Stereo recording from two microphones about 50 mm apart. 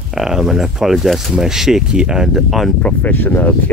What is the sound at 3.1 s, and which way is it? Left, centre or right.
Speech, left.